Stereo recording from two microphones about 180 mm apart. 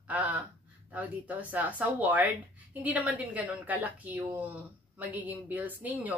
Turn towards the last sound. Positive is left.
turn(degrees=-10)  # may be behind; listen again after turning